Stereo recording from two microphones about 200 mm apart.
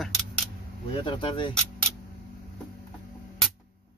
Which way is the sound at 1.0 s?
25° left (ahead or behind).